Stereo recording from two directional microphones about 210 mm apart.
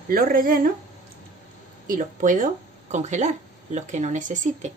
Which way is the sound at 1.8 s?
40° right (ahead or behind).